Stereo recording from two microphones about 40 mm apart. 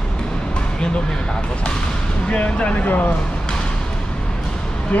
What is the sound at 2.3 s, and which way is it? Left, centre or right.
Speech, left.